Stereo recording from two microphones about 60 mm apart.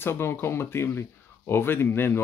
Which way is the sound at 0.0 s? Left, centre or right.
Left.